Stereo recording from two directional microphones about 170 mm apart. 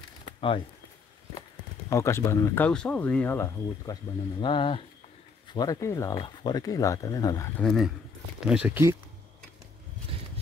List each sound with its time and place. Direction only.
0.2 s a sound: 30° left (ahead or behind)
1.9 s speech: 15° left (ahead or behind)
7.6 s speech: centre (ahead or behind)